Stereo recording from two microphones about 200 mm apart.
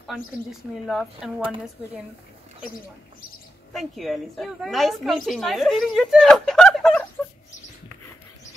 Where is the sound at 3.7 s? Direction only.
Centre (ahead or behind).